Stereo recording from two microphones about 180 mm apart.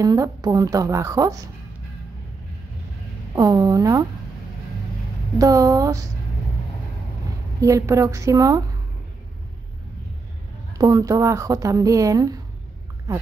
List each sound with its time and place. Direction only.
0.0 s speech: 20° right (ahead or behind)
3.3 s speech: 20° right (ahead or behind)
5.4 s speech: 20° right (ahead or behind)
7.6 s a woman's voice: 15° right (ahead or behind)
10.8 s speech: 20° right (ahead or behind)